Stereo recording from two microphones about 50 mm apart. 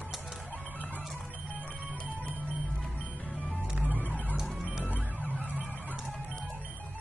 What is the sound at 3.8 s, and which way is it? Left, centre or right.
Music, right.